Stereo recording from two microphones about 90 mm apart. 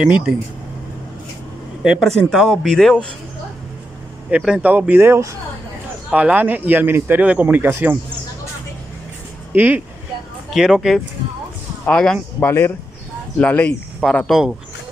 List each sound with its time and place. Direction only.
0.0 s speech: 5° right (ahead or behind)
1.8 s speech: 5° right (ahead or behind)
2.0 s speech: 5° left (ahead or behind)
4.4 s speech: 10° right (ahead or behind); by 5.4 s 30° right (ahead or behind)
6.0 s speech: 15° right (ahead or behind)
9.5 s speech: 20° right (ahead or behind)
10.5 s speech: 5° right (ahead or behind)
11.8 s speech: 10° left (ahead or behind)
12.4 s speech: 25° left (ahead or behind)
14.0 s speech: centre (ahead or behind)